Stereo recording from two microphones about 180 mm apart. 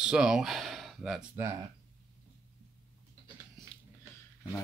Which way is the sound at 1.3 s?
15° right (ahead or behind).